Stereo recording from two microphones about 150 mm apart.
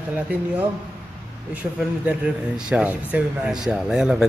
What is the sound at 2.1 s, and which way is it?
Speech, 5° right (ahead or behind).